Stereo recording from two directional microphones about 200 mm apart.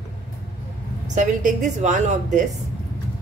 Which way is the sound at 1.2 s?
35° right (ahead or behind).